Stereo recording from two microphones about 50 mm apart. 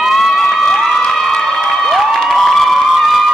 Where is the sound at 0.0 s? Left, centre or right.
Centre.